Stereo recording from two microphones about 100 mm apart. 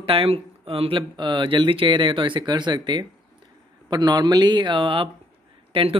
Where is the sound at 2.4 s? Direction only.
45° right (ahead or behind).